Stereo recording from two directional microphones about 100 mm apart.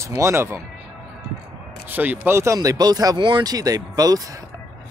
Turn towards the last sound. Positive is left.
turn(degrees=-40)  # may be behind; listen again after turning